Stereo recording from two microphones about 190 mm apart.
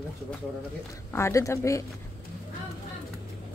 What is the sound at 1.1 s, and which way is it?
Speech, 15° left (ahead or behind).